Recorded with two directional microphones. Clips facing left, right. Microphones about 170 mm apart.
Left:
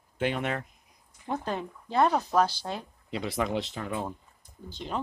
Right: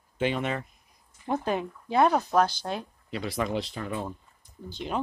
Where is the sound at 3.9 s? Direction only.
10° left (ahead or behind).